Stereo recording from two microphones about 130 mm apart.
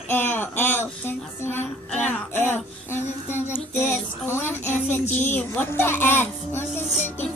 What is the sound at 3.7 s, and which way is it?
Music, 20° left (ahead or behind).